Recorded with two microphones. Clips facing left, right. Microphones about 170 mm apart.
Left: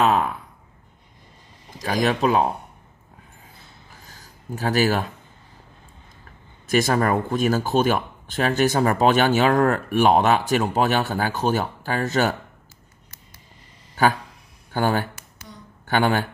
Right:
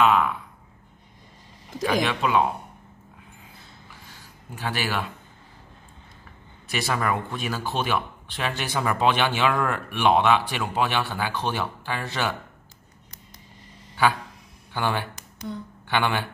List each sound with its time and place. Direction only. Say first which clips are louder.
0.0 s speech: left 1 dB; 40° left (ahead or behind)
2.0 s speech: left 8 dB; 40° left (ahead or behind)
3.9 s a sound: even; 40° left (ahead or behind)
6.7 s speech: left 6 dB; 45° left (ahead or behind)
14.0 s speech: left 3 dB; 45° left (ahead or behind)